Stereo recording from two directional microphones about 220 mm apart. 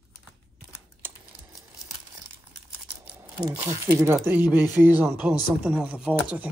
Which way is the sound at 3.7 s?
10° right (ahead or behind).